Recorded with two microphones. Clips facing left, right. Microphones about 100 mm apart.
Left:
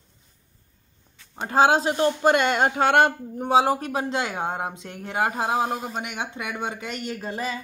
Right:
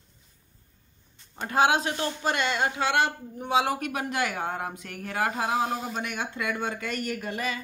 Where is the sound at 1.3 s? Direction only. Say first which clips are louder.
Left 4 dB; 30° left (ahead or behind).